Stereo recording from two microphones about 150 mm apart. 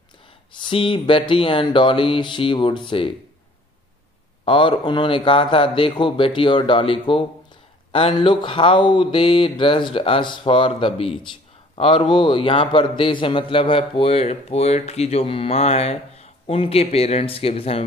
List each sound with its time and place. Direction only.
0.5 s a man's voice: 35° left (ahead or behind)
4.5 s a man's voice: 35° left (ahead or behind)